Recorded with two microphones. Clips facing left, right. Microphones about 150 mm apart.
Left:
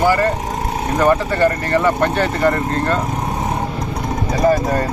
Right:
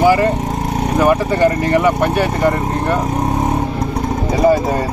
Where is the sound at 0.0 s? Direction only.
15° right (ahead or behind).